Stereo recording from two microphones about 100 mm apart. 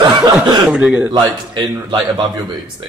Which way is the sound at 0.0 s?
45° right (ahead or behind).